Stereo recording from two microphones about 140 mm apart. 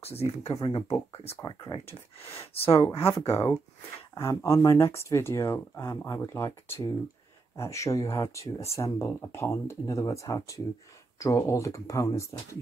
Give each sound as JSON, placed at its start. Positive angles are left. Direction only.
{"t": 0.0, "sound": "speech", "side_deg": 45}
{"t": 1.9, "sound": "speech", "side_deg": 45}
{"t": 4.1, "sound": "speech", "side_deg": 20}